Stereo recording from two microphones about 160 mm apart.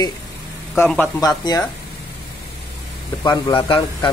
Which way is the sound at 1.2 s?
25° left (ahead or behind).